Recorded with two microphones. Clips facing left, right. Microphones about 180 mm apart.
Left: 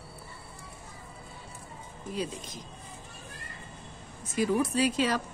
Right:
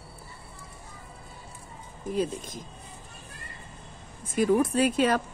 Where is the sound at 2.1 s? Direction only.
50° right (ahead or behind).